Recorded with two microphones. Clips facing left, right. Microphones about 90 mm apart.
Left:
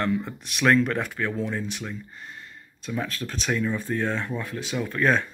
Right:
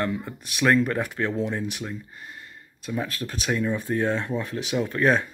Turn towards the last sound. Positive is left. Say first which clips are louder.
# right 1 dB
turn(degrees=-15)  # may be behind; listen again after turning